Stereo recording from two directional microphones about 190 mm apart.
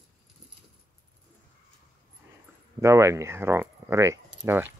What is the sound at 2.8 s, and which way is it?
Speech, 15° right (ahead or behind).